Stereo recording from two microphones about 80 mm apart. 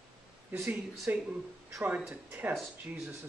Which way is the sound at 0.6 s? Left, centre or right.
Centre.